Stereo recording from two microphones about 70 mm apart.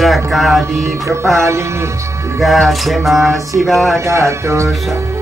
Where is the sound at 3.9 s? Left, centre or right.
Right.